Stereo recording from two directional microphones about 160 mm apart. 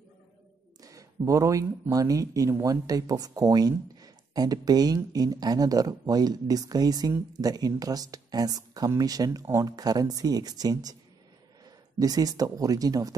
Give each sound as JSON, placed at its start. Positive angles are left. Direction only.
{"t": 0.8, "sound": "speech", "side_deg": -20}
{"t": 12.0, "sound": "speech", "side_deg": -25}